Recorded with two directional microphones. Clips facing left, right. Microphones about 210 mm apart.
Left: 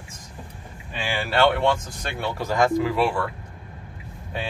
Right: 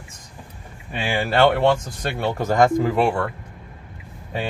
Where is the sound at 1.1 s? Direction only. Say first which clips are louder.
Right 3 dB; 50° right (ahead or behind).